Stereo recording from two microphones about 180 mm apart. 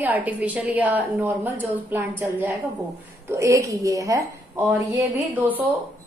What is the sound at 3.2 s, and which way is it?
A woman's voice, 15° right (ahead or behind).